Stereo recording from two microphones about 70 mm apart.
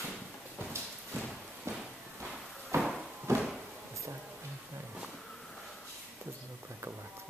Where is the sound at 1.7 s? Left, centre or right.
Right.